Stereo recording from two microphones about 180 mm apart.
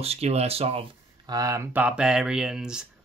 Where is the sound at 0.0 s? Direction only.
35° right (ahead or behind).